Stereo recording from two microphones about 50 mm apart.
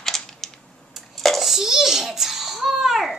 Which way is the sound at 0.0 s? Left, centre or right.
Centre.